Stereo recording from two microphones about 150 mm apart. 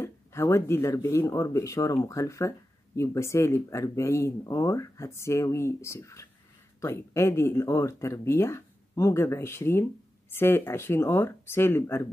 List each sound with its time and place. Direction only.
0.0 s speech: 15° left (ahead or behind)